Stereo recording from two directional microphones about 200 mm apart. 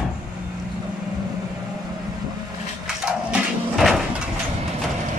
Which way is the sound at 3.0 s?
Centre (ahead or behind).